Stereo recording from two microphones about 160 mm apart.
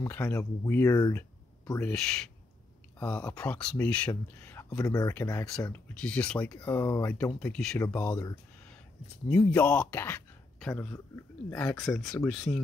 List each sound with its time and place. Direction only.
0.0 s speech: 20° left (ahead or behind)
1.8 s speech: 5° left (ahead or behind); by 5.7 s 20° left (ahead or behind)
5.7 s speech: 10° left (ahead or behind)
7.3 s speech: 5° left (ahead or behind)
9.4 s speech: 10° left (ahead or behind)